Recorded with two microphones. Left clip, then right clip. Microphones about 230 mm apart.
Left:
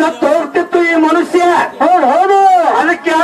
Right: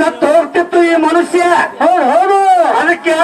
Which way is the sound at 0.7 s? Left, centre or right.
Right.